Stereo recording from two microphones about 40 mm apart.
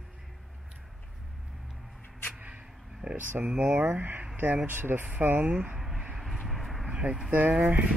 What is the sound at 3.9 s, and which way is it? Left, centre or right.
Speech, right.